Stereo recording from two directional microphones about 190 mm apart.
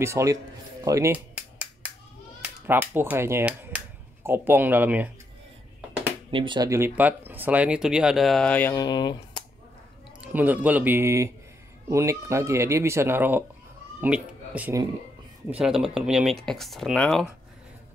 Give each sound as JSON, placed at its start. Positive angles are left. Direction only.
{"t": 0.0, "sound": "speech", "side_deg": -15}
{"t": 0.8, "sound": "cap gun", "side_deg": -15}
{"t": 2.4, "sound": "speech", "side_deg": -10}
{"t": 6.3, "sound": "speech", "side_deg": -25}
{"t": 8.7, "sound": "speech", "side_deg": 20}
{"t": 10.2, "sound": "speech", "side_deg": -10}